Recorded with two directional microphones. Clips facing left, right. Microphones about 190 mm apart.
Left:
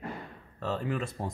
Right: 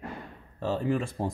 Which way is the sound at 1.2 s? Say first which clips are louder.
Right 5 dB; 25° right (ahead or behind).